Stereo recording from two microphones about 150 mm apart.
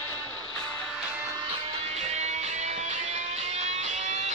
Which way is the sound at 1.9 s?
50° right (ahead or behind).